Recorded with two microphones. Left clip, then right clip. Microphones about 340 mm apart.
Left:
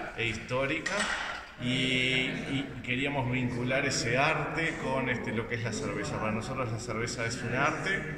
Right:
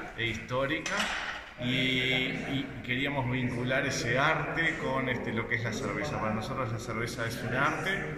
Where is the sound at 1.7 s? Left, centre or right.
Left.